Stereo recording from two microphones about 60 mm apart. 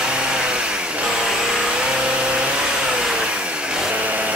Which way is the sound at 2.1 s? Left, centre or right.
Centre.